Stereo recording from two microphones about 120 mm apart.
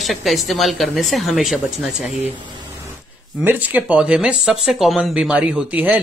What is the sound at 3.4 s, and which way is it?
Speech, 15° right (ahead or behind).